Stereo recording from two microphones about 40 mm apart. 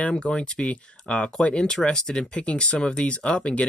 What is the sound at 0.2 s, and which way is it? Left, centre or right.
Speech, left.